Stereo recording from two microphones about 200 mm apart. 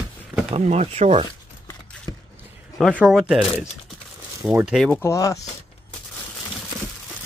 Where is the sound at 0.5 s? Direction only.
35° right (ahead or behind).